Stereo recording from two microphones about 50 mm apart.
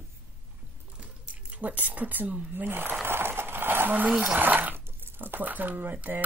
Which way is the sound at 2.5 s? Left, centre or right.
Right.